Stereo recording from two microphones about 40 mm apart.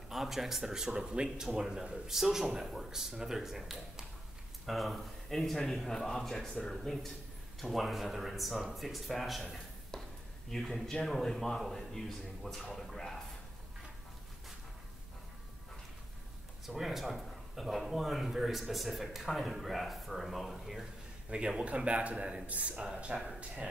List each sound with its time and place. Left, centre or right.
0.1 s a man's voice: centre
7.7 s a man's voice: centre
10.5 s speech: centre
12.6 s a sound: centre
16.6 s a man's voice: centre
21.3 s a man's voice: right